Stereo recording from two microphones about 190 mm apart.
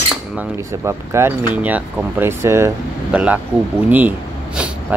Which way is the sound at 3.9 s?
10° right (ahead or behind).